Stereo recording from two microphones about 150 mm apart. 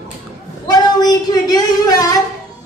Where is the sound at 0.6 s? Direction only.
25° left (ahead or behind).